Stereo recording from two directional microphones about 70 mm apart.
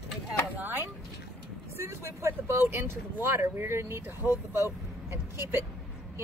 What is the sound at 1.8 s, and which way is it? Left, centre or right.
Speech, right.